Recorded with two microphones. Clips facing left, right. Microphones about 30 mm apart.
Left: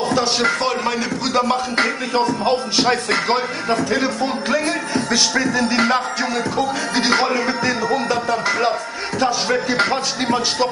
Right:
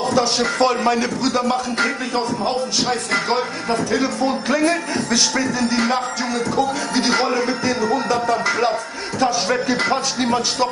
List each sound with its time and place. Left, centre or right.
0.1 s music: centre
0.6 s a man's voice: centre
1.3 s music: centre
5.4 s music: centre